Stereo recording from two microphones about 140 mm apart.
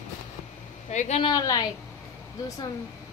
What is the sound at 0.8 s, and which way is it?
Speech, 55° left (ahead or behind).